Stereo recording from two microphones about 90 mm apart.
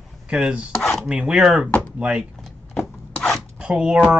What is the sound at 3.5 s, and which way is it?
Speech, 10° right (ahead or behind).